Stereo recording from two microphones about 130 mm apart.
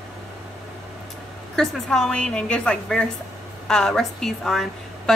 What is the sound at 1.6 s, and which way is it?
A woman's voice, 5° left (ahead or behind).